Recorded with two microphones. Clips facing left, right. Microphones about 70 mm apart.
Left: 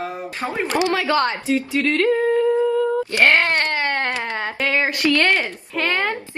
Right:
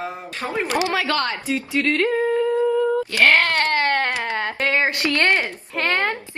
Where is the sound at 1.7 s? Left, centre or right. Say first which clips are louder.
Even; centre.